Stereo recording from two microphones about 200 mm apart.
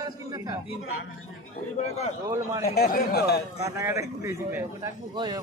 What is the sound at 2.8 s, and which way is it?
Speech, 50° left (ahead or behind).